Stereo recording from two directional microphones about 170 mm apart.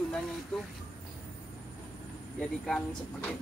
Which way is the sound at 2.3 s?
5° left (ahead or behind).